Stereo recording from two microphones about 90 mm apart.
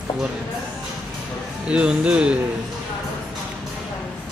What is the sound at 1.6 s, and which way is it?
Speech, 10° right (ahead or behind).